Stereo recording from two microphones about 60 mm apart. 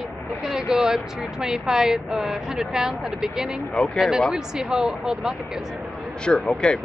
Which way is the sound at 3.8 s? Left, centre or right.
Centre.